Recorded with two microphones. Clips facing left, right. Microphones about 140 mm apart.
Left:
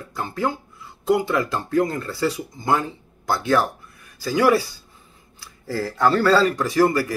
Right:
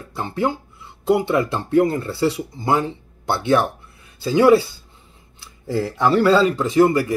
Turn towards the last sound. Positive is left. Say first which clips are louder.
# right 3 dB
turn(degrees=-20)  # may be behind; listen again after turning